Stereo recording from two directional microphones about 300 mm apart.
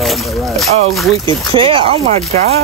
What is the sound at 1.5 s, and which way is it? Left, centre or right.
Speech, centre.